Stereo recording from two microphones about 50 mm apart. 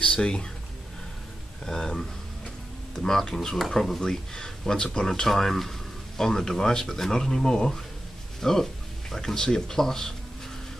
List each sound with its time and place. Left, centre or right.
0.0 s speech: centre
1.7 s speech: centre